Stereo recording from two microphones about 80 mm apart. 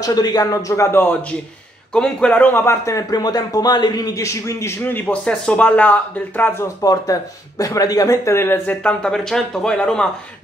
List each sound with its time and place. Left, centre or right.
0.0 s a man's voice: left
2.0 s speech: centre
2.6 s a man's voice: left
4.8 s speech: left
6.6 s a man's voice: left
8.8 s speech: centre